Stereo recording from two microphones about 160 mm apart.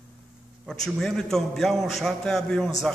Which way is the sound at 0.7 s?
Centre (ahead or behind).